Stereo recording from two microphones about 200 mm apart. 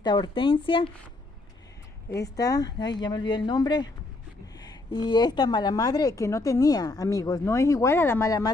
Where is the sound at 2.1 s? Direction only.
15° left (ahead or behind).